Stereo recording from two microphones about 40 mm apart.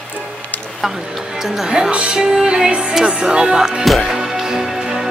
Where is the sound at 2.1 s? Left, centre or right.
Centre.